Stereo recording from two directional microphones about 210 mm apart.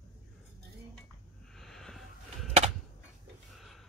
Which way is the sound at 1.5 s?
Centre (ahead or behind).